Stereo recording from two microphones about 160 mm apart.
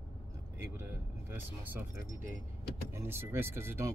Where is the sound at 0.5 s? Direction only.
15° right (ahead or behind).